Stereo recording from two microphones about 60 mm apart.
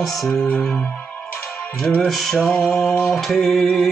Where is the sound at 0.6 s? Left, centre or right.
Centre.